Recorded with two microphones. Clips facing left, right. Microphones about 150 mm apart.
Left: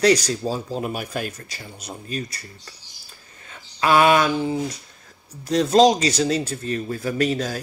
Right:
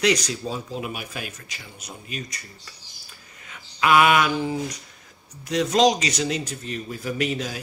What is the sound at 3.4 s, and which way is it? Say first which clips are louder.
Speech: left 1 dB; 35° left (ahead or behind).